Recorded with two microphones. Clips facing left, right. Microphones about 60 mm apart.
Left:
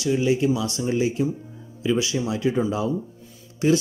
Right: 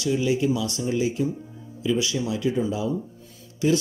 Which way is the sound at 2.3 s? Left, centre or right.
Left.